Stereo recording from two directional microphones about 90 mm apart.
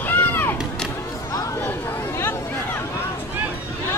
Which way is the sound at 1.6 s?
25° left (ahead or behind).